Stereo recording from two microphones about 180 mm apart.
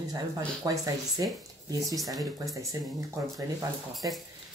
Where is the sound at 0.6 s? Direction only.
20° right (ahead or behind).